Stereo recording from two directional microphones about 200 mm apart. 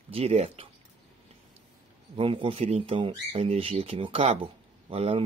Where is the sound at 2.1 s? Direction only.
25° right (ahead or behind).